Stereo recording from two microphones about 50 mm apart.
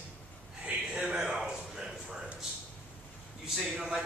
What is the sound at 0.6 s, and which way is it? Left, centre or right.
A man's voice, centre.